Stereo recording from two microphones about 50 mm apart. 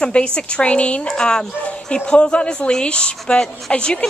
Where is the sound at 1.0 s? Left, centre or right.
Centre.